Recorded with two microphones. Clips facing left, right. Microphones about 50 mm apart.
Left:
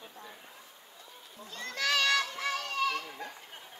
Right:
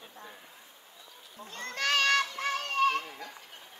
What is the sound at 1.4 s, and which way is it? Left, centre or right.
Children playing, right.